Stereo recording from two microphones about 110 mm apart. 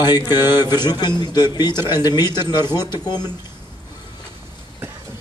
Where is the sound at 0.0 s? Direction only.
40° left (ahead or behind).